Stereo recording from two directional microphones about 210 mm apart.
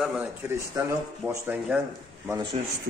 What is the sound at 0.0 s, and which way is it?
A man's voice, 5° right (ahead or behind).